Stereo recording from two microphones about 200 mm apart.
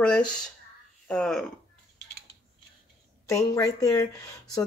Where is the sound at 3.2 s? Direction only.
15° left (ahead or behind).